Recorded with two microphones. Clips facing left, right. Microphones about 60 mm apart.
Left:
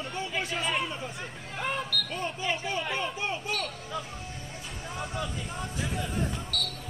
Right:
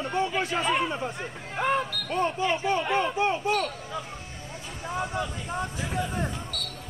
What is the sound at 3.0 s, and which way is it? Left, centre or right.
Speech, right.